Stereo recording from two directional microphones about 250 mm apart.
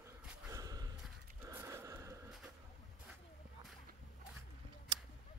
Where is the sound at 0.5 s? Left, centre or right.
Centre.